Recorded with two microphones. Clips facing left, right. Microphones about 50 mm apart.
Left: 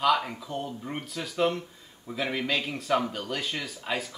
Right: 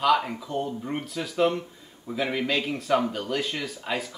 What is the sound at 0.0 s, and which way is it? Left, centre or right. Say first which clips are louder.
Speech: right 2 dB; centre.